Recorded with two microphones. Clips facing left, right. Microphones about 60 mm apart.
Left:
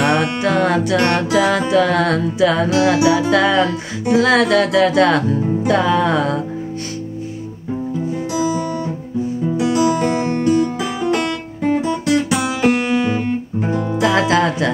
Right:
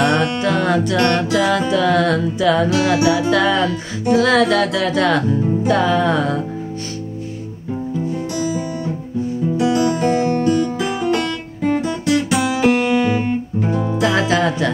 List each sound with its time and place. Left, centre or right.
0.0 s music: left
9.8 s music: left
10.4 s music: centre